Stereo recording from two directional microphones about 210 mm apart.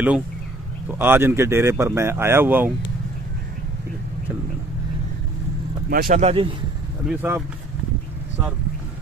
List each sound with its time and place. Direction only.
0.9 s speech: 10° right (ahead or behind)
5.9 s speech: 45° right (ahead or behind)
7.1 s speech: 10° right (ahead or behind)